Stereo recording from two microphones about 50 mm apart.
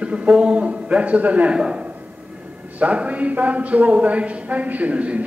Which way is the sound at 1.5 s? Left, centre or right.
Centre.